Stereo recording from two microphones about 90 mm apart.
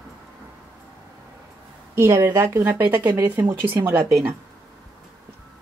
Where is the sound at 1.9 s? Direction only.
30° right (ahead or behind).